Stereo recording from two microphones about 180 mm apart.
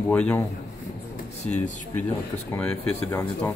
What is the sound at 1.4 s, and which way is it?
Speech, 40° left (ahead or behind).